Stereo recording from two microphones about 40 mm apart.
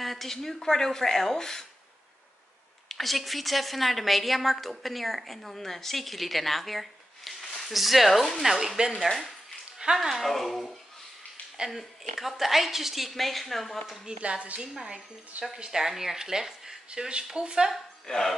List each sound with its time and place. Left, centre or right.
0.0 s speech: centre
2.9 s a woman's voice: centre
8.9 s a woman's voice: centre
9.8 s speech: centre
10.2 s a woman's voice: centre
14.0 s a woman's voice: centre
18.0 s speech: centre